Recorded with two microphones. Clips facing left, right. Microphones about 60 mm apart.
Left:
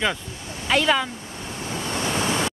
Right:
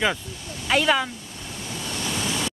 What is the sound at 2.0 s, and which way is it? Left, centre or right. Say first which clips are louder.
Waves: left 4 dB; left.